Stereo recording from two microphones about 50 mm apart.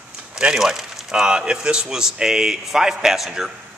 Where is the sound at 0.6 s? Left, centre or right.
Centre.